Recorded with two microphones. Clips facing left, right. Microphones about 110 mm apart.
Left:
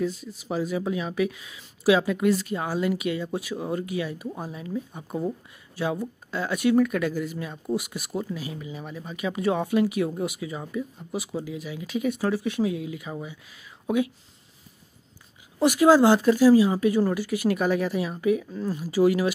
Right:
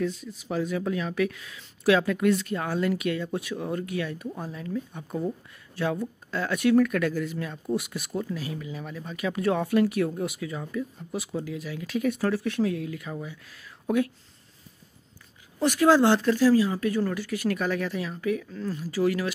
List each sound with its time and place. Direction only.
0.0 s speech: centre (ahead or behind)
15.6 s speech: 10° left (ahead or behind)